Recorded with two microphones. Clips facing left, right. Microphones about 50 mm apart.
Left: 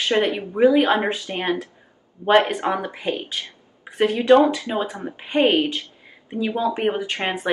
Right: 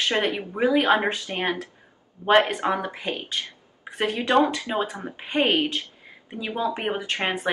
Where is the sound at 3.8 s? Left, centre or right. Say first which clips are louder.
Left 6 dB; centre.